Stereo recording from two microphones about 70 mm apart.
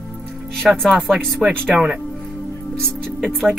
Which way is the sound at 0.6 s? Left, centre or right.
Centre.